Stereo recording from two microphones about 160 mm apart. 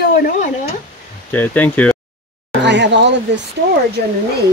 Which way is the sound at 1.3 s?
10° left (ahead or behind).